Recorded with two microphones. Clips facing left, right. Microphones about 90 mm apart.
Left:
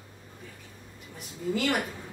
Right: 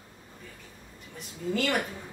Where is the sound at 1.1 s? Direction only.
5° left (ahead or behind).